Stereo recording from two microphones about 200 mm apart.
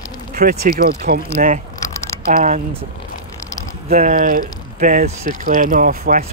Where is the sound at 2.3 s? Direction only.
40° right (ahead or behind).